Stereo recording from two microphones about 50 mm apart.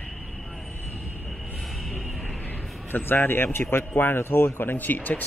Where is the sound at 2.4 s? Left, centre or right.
Left.